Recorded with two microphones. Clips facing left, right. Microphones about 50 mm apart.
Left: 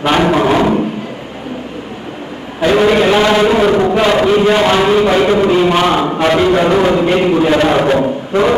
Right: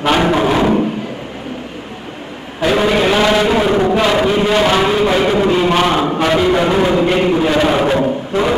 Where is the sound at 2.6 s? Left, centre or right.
Centre.